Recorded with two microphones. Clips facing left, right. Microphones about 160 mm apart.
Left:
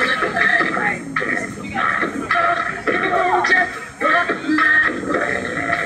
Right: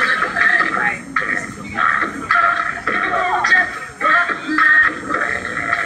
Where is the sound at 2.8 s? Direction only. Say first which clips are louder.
Left 3 dB; 25° left (ahead or behind).